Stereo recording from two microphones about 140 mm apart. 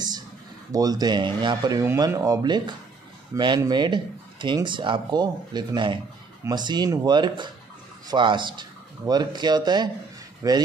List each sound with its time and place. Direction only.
0.7 s speech: 25° right (ahead or behind)